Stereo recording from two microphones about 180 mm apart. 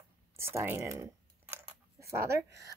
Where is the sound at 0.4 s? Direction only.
15° right (ahead or behind).